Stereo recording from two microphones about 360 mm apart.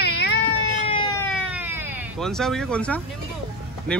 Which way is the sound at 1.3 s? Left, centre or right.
Centre.